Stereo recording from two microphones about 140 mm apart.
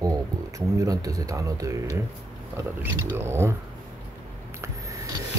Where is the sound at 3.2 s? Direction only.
15° right (ahead or behind).